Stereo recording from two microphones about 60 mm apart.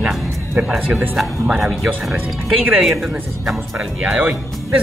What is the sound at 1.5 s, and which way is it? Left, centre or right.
Speech, centre.